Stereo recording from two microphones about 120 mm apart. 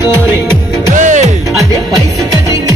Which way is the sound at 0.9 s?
90° right.